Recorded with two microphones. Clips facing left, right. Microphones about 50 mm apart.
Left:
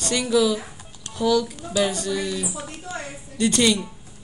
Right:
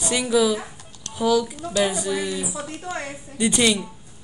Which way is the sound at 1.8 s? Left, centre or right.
Centre.